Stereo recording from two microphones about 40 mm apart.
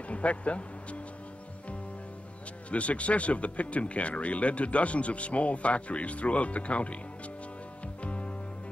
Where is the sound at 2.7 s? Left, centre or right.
Left.